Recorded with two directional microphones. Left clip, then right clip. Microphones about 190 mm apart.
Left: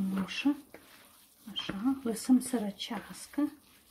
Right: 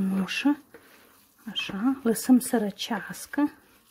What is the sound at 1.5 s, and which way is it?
Speech, 55° right (ahead or behind).